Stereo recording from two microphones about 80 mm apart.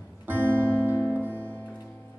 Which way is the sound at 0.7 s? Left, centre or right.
Left.